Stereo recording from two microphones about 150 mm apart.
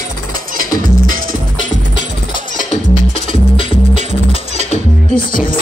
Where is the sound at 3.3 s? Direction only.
40° left (ahead or behind).